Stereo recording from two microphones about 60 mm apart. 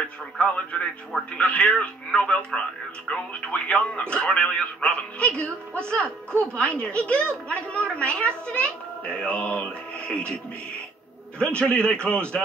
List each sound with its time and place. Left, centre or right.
0.0 s a woman's voice: left
11.3 s a man's voice: centre